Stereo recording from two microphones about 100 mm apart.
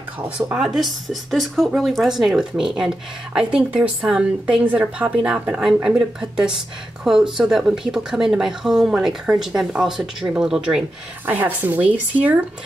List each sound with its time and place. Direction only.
0.4 s speech: 15° right (ahead or behind)
0.7 s speech: centre (ahead or behind)
11.2 s speech: 20° right (ahead or behind)